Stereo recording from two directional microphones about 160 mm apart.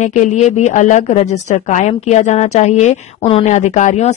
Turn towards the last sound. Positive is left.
turn(degrees=50)  # may be behind; listen again after turning